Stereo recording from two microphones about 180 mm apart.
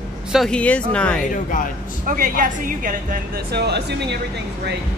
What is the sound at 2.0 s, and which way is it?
A woman's voice, 50° right (ahead or behind).